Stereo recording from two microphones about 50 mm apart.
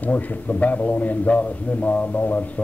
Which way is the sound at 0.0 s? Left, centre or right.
Left.